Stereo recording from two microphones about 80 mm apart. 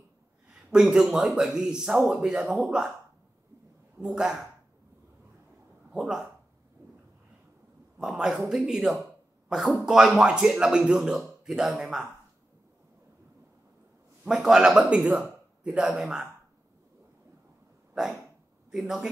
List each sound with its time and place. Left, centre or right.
0.7 s a man's voice: centre
4.0 s a man's voice: centre
5.9 s speech: centre
8.0 s a man's voice: centre
14.2 s a man's voice: centre
18.7 s speech: centre